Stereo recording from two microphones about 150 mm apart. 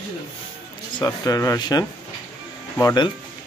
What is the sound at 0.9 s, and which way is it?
A man's voice, 25° left (ahead or behind).